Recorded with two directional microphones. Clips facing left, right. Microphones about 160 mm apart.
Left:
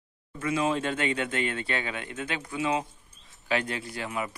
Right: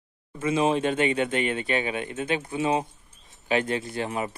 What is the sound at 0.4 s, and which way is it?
Speech, 20° right (ahead or behind).